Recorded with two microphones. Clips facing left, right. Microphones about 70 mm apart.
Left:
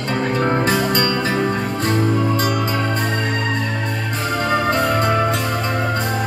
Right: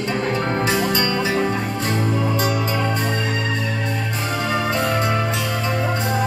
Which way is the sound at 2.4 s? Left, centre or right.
Left.